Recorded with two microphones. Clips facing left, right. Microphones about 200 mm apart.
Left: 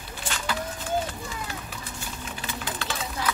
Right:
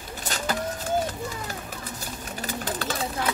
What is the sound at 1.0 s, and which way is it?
Pigeon, 40° right (ahead or behind).